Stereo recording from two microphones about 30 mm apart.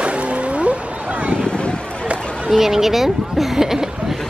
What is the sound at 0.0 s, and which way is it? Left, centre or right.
Cat, right.